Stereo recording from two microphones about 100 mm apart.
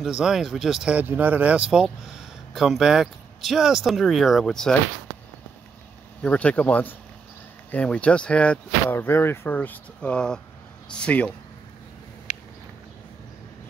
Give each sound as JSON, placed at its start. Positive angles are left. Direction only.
{"t": 0.0, "sound": "speech", "side_deg": -5}
{"t": 0.9, "sound": "speech", "side_deg": -15}
{"t": 2.5, "sound": "speech", "side_deg": -5}
{"t": 6.2, "sound": "speech", "side_deg": 15}
{"t": 8.9, "sound": "speech", "side_deg": 25}